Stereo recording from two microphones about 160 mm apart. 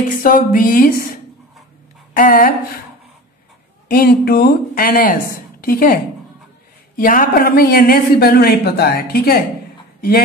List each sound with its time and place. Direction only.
0.2 s a sound: 60° left (ahead or behind)
3.9 s a man's voice: 70° left (ahead or behind)
7.0 s a man's voice: 60° left (ahead or behind)